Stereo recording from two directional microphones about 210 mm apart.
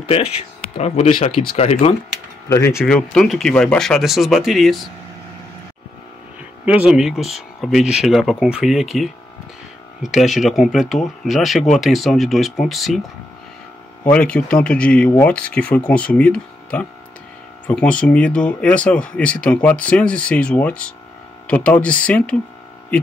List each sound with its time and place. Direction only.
0.0 s speech: 30° left (ahead or behind)
2.5 s speech: 15° left (ahead or behind)
6.6 s speech: 5° right (ahead or behind)
10.3 s speech: centre (ahead or behind)
14.1 s speech: 5° left (ahead or behind)